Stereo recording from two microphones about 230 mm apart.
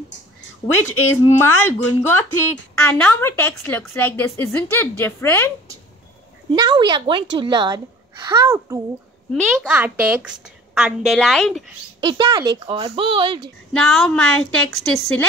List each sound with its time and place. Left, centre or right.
1.2 s a woman's voice: centre
6.5 s a woman's voice: centre
9.3 s a woman's voice: centre
12.0 s speech: centre
13.7 s a woman's voice: centre